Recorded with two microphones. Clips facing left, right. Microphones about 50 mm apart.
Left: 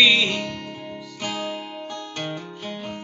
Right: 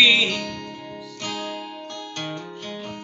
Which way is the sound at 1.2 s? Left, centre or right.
Centre.